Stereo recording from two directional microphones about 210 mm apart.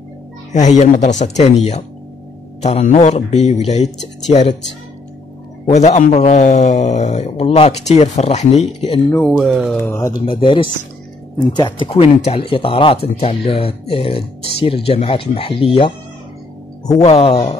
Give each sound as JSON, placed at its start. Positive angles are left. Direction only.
{"t": 0.5, "sound": "speech", "side_deg": 35}
{"t": 5.7, "sound": "speech", "side_deg": 35}
{"t": 9.1, "sound": "speech", "side_deg": 5}
{"t": 9.8, "sound": "speech", "side_deg": 10}
{"t": 17.0, "sound": "speech", "side_deg": 30}